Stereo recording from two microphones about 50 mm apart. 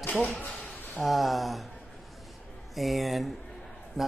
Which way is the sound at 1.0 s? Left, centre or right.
Centre.